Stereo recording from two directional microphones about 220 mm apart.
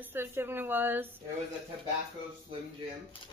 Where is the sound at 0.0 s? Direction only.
10° right (ahead or behind).